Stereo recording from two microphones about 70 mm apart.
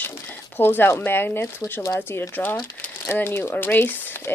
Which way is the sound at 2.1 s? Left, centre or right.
Left.